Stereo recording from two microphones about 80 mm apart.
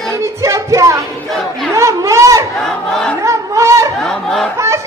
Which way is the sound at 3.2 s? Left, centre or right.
Right.